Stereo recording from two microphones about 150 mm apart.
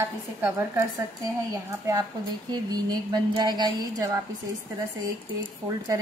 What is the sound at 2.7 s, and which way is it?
A woman's voice, 25° right (ahead or behind).